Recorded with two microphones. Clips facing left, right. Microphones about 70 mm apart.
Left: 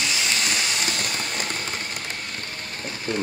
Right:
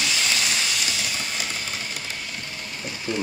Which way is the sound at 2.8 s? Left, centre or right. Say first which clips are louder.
Left 1 dB; left.